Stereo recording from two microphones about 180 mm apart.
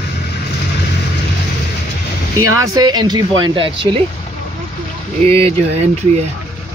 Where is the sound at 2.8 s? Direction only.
25° right (ahead or behind).